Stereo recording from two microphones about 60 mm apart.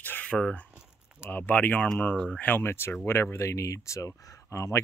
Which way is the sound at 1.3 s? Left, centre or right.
Left.